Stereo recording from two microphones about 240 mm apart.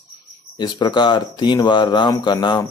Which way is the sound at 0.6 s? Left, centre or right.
Centre.